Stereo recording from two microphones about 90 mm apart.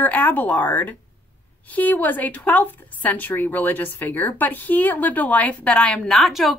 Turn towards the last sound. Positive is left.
turn(degrees=0)  # may be behind; listen again after turning